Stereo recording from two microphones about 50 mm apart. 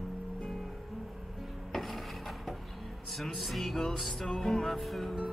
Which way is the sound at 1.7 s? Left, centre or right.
Centre.